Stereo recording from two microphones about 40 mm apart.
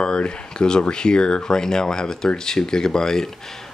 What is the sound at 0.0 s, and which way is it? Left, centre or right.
Speech, left.